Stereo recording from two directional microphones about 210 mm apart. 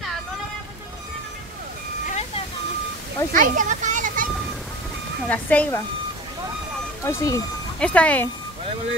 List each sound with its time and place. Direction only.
2.0 s vehicle: 30° left (ahead or behind)
3.3 s music: 40° right (ahead or behind)
5.3 s speech: 5° left (ahead or behind)
7.1 s speech: 15° left (ahead or behind)